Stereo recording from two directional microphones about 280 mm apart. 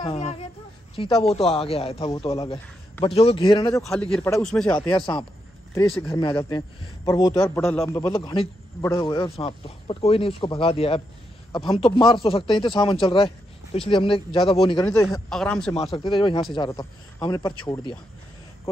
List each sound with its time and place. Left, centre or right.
0.0 s a man's voice: left
3.8 s a man's voice: centre
4.9 s speech: centre
5.9 s a man's voice: centre
6.3 s a man's voice: centre
15.2 s a man's voice: centre
16.0 s speech: centre